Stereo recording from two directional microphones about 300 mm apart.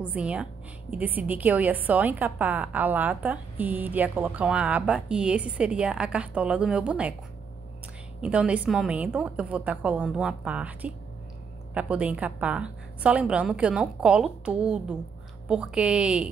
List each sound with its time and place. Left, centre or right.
0.1 s a woman's voice: centre
8.2 s a woman's voice: centre